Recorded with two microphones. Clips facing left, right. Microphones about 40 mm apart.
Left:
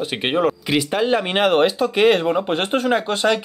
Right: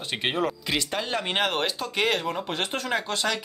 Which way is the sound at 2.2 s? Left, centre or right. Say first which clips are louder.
Left 9 dB; left.